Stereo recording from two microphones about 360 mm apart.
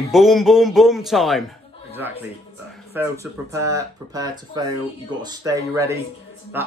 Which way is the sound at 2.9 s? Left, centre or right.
Centre.